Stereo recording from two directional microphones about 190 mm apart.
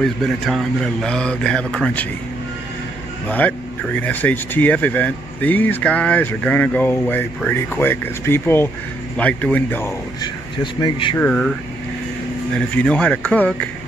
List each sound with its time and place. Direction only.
0.0 s speech: centre (ahead or behind)
3.3 s speech: 10° left (ahead or behind)
10.6 s speech: 25° left (ahead or behind)
11.1 s speech: 5° left (ahead or behind)
12.5 s speech: 5° left (ahead or behind)